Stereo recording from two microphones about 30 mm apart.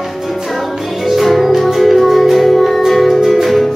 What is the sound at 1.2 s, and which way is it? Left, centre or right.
Music, centre.